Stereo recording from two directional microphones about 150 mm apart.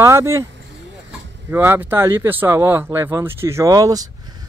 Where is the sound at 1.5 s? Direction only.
15° right (ahead or behind).